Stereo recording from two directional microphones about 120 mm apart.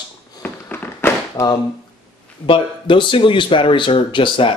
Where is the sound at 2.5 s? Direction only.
45° left (ahead or behind).